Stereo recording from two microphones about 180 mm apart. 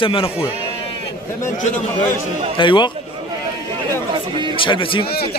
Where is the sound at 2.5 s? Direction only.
25° left (ahead or behind).